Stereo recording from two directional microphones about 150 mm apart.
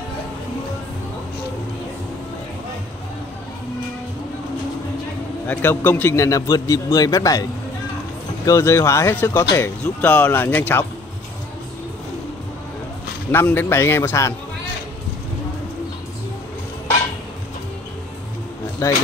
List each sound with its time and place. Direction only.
5.5 s a man's voice: 15° left (ahead or behind)
8.5 s speech: 20° left (ahead or behind)
13.3 s speech: 15° left (ahead or behind)
18.8 s a man's voice: 20° left (ahead or behind)